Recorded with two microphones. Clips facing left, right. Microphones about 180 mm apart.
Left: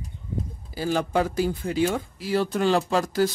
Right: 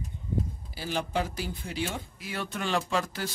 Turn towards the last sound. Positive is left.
turn(degrees=40)  # may be behind; listen again after turning